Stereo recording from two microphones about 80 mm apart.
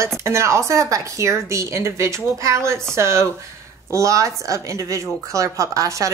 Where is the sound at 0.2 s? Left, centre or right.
Right.